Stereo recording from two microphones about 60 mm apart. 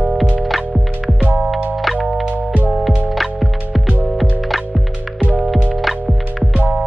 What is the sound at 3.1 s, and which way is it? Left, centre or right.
Music, centre.